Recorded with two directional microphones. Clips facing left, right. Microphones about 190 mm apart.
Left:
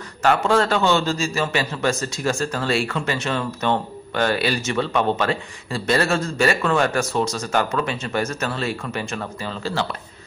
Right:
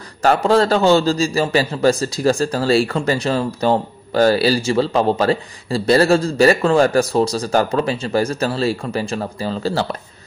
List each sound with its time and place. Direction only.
0.2 s a man's voice: 35° right (ahead or behind)